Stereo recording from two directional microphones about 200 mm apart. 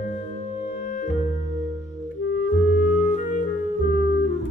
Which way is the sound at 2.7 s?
35° left (ahead or behind).